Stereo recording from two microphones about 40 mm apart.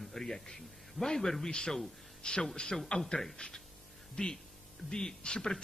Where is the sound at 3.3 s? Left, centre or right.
Left.